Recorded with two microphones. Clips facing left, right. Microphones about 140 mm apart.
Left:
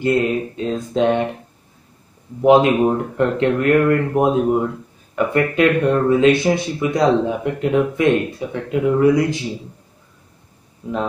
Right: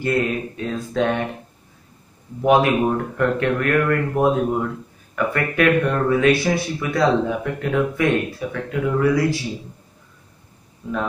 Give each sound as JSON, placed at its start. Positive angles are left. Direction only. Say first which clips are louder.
{"t": 0.0, "sound": "speech", "louder": "left 4 dB", "side_deg": 20}
{"t": 2.4, "sound": "speech", "louder": "left 4 dB", "side_deg": 20}